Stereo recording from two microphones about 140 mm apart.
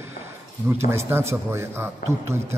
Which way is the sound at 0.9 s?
20° right (ahead or behind).